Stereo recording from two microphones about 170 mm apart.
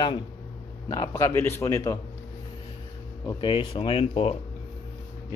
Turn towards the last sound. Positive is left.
turn(degrees=35)  # may be behind; listen again after turning